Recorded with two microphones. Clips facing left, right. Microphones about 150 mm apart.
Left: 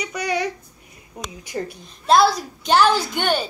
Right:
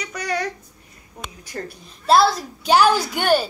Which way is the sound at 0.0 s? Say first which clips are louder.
Left 2 dB; 10° left (ahead or behind).